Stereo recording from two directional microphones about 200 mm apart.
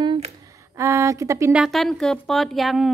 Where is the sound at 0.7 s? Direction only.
15° right (ahead or behind).